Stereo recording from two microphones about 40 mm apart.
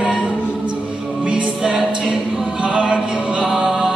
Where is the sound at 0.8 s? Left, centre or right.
Centre.